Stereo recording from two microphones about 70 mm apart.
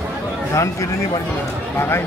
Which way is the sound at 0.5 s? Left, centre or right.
Left.